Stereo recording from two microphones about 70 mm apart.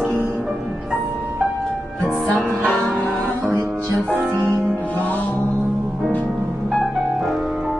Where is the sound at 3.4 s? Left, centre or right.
Right.